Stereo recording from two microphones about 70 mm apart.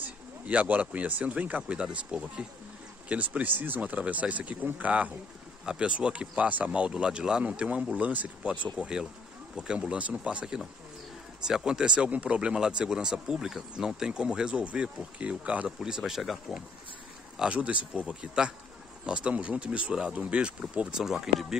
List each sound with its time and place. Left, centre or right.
0.0 s speech: right
10.4 s speech: centre
15.8 s speech: centre
17.4 s speech: centre